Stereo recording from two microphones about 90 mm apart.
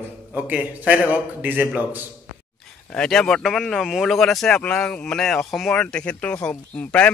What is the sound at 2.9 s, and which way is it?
Speech, 10° left (ahead or behind).